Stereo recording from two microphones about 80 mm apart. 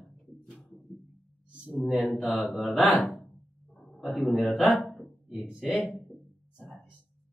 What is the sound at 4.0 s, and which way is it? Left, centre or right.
A man's voice, centre.